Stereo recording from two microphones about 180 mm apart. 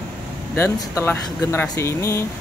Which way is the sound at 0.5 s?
15° left (ahead or behind).